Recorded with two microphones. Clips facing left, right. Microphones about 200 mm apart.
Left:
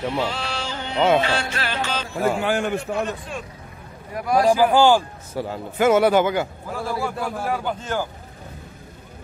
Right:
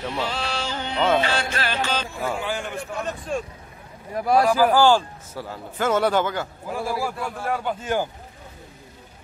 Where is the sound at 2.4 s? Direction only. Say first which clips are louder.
Left 6 dB; 60° left (ahead or behind).